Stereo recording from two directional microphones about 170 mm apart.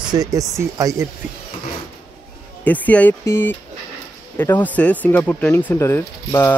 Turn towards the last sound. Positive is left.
turn(degrees=15)  # may be behind; listen again after turning